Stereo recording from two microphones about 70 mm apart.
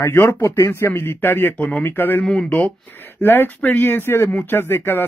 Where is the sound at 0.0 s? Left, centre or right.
Left.